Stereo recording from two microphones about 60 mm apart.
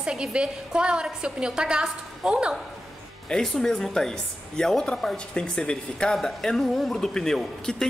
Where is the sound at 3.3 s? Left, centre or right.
Centre.